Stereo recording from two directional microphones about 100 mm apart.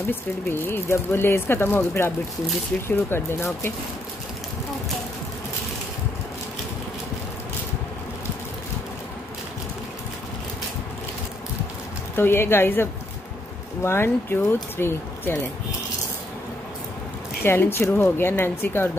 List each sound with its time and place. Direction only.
0.1 s speech: 20° left (ahead or behind)
12.2 s speech: 25° left (ahead or behind)
17.4 s speech: 25° left (ahead or behind)